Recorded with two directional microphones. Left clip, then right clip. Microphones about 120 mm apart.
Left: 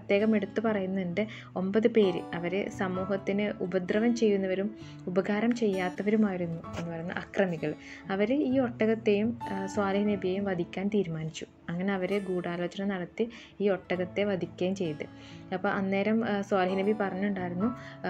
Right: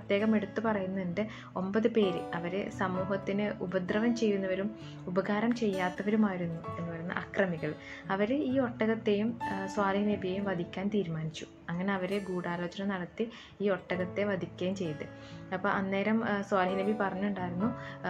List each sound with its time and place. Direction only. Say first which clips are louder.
0.1 s speech: left 3 dB; 50° left (ahead or behind)